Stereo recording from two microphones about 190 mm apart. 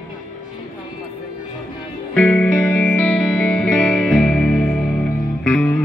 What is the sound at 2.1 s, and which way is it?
Music, 5° left (ahead or behind).